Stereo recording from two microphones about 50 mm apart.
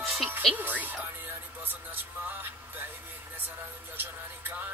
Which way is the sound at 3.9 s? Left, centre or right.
Right.